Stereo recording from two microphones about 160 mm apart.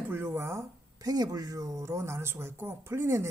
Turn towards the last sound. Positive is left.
turn(degrees=-15)  # may be behind; listen again after turning